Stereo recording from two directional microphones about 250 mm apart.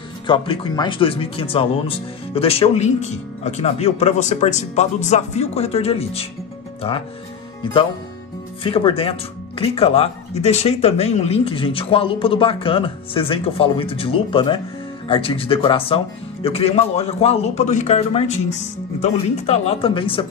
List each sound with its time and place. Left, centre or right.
0.3 s speech: centre
8.6 s speech: left